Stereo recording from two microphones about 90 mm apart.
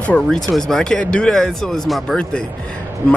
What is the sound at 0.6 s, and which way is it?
Speech, 5° left (ahead or behind).